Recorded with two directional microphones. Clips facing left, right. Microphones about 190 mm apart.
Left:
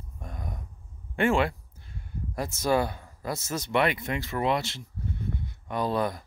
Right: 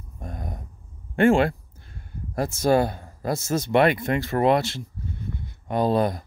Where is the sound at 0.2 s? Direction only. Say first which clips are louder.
Right 4 dB; 45° right (ahead or behind).